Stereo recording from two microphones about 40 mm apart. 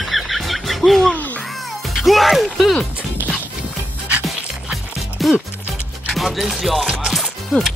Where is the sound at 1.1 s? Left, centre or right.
Left.